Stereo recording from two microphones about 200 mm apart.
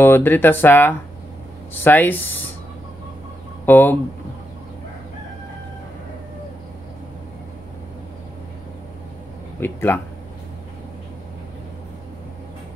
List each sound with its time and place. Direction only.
0.0 s speech: 10° left (ahead or behind)
3.6 s speech: 10° left (ahead or behind)
9.6 s speech: 10° left (ahead or behind)